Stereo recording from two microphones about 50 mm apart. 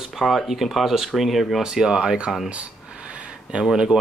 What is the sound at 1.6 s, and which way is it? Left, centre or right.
Speech, centre.